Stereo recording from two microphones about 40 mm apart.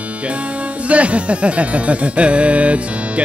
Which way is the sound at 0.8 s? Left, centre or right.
Right.